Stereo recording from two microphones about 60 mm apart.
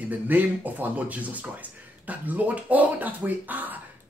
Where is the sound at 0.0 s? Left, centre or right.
Right.